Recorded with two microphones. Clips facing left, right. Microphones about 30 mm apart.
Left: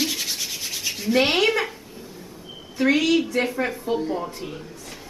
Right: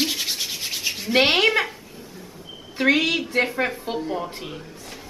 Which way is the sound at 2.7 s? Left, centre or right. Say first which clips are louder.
Left 1 dB; right.